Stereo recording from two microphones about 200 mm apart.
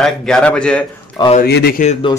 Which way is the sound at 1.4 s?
50° left (ahead or behind).